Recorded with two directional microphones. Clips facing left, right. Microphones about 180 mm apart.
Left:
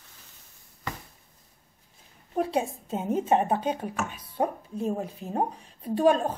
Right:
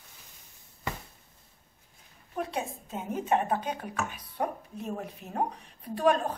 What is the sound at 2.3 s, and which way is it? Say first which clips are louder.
A woman's voice: left 7 dB; 30° left (ahead or behind).